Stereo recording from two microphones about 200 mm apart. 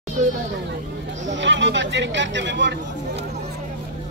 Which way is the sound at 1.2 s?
65° right (ahead or behind).